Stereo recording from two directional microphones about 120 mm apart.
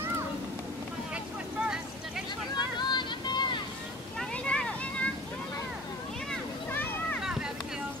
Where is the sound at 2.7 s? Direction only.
40° left (ahead or behind).